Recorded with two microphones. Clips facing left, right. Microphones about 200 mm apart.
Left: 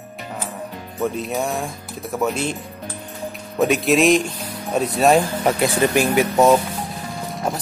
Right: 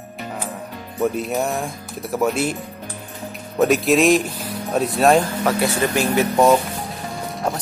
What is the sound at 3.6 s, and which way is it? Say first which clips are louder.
Speech: right 1 dB; centre (ahead or behind).